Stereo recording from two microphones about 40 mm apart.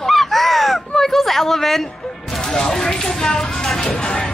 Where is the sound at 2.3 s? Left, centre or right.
Centre.